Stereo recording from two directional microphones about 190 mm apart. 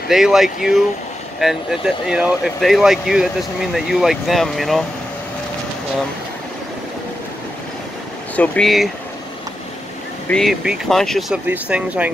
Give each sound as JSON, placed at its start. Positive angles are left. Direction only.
{"t": 0.1, "sound": "speech", "side_deg": 0}
{"t": 8.4, "sound": "speech", "side_deg": 0}
{"t": 10.3, "sound": "speech", "side_deg": 0}